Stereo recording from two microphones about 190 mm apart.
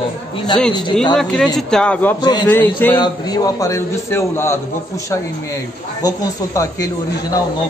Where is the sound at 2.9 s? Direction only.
20° left (ahead or behind).